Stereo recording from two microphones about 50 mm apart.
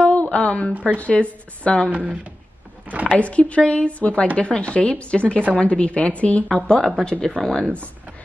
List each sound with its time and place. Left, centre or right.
0.0 s a sound: left
0.8 s speech: left
3.1 s speech: left
6.5 s speech: centre